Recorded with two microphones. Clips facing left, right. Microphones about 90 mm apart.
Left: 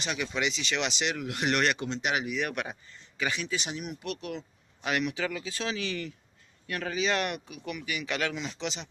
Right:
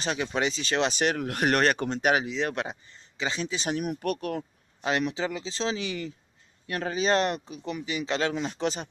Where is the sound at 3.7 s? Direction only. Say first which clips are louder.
Right 7 dB; 50° right (ahead or behind).